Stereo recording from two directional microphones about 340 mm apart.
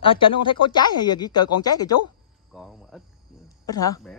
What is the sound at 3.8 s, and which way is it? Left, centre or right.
Speech, centre.